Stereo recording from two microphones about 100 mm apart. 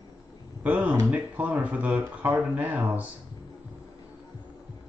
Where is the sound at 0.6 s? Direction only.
15° right (ahead or behind).